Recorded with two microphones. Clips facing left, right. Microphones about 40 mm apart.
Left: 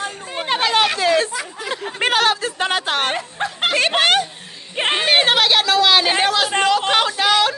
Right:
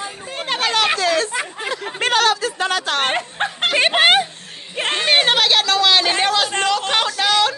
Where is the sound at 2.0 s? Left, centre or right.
Centre.